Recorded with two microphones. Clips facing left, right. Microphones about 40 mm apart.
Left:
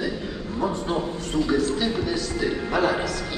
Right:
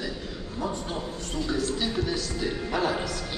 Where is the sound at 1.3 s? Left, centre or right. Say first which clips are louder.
Left 6 dB; centre.